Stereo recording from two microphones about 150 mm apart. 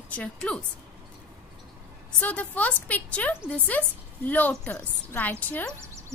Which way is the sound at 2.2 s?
10° left (ahead or behind).